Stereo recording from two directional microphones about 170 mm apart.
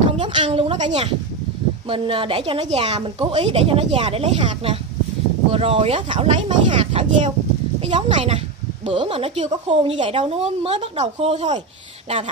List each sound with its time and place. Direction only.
0.2 s speech: 30° right (ahead or behind)
1.9 s speech: 30° right (ahead or behind)